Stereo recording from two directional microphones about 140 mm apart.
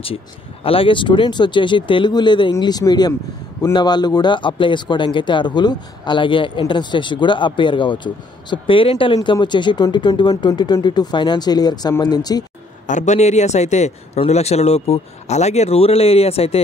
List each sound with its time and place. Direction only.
0.7 s speech: 40° left (ahead or behind)
12.8 s a man's voice: 60° left (ahead or behind)